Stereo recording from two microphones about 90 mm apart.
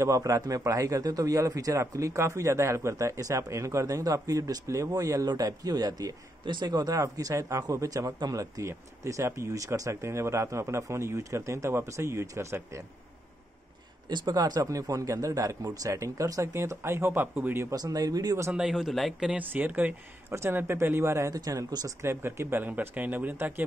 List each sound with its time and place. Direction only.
0.0 s a man's voice: 35° right (ahead or behind)
6.4 s a man's voice: 55° right (ahead or behind); by 12.8 s 30° right (ahead or behind)
14.0 s a man's voice: 50° right (ahead or behind); by 17.7 s 25° right (ahead or behind)
17.7 s speech: 45° right (ahead or behind)
18.5 s speech: 10° right (ahead or behind)
19.2 s speech: 20° right (ahead or behind)
21.4 s a man's voice: 40° right (ahead or behind)
22.0 s speech: 25° right (ahead or behind)